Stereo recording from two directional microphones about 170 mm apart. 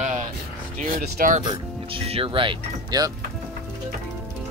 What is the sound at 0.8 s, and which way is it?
Speech, 55° right (ahead or behind).